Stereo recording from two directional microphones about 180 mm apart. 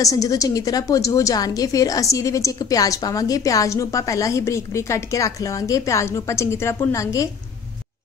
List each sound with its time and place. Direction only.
0.0 s a woman's voice: 20° left (ahead or behind)